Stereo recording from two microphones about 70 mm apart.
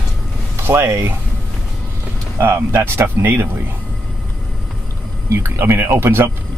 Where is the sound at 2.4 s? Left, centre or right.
Right.